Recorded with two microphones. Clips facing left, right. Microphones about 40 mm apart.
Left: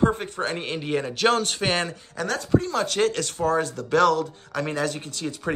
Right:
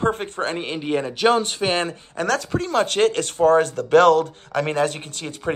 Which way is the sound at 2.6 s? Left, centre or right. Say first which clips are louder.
Right 4 dB; right.